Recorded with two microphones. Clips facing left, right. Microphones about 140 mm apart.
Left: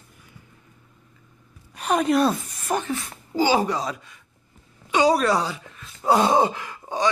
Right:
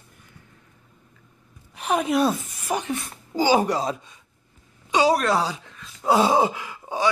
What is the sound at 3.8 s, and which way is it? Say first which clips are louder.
Speech: right 3 dB; 25° right (ahead or behind).